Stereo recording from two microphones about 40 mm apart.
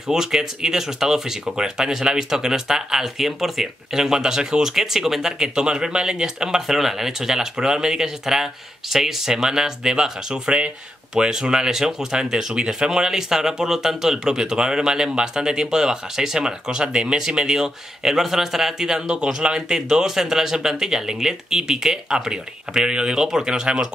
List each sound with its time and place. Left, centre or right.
0.1 s speech: centre
5.4 s speech: centre
6.7 s speech: centre